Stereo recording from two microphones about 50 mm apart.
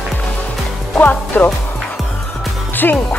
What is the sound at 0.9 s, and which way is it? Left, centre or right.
Speech, left.